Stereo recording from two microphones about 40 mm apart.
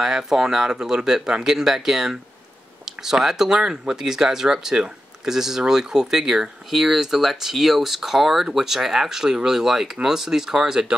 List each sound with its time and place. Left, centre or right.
0.0 s speech: centre